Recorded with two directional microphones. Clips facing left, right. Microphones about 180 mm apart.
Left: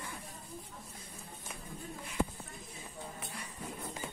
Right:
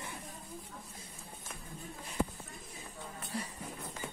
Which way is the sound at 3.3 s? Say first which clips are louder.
Right 8 dB; 35° right (ahead or behind).